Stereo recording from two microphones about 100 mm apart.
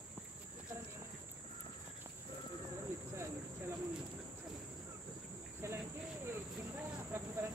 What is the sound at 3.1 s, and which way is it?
Cricket, 30° right (ahead or behind).